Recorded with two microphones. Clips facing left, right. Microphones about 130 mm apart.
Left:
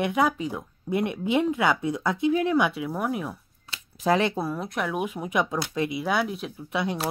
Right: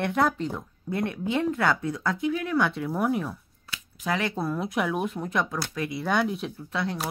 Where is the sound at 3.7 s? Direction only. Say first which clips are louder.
Left 6 dB; 30° left (ahead or behind).